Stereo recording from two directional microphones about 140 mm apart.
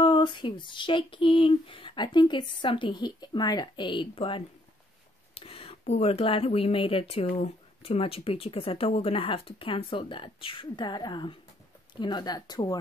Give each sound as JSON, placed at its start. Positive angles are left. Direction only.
{"t": 0.0, "sound": "speech", "side_deg": 35}